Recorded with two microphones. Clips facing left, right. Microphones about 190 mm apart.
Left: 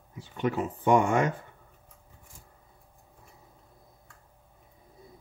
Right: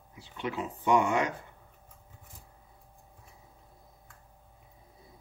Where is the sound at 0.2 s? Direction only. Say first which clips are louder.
Left 6 dB; 45° left (ahead or behind).